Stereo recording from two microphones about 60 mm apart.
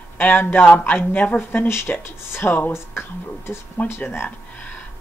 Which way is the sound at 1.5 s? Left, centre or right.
Left.